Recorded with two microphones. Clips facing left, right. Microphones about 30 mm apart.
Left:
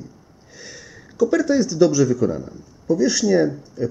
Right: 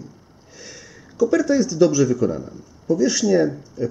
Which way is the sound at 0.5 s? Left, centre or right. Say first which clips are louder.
Left 1 dB; centre.